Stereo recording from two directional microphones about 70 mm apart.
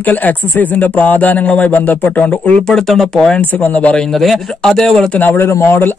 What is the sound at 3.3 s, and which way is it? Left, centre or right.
Speech, left.